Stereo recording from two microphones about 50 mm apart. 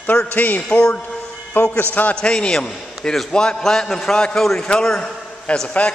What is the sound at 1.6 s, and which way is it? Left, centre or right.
Speech, left.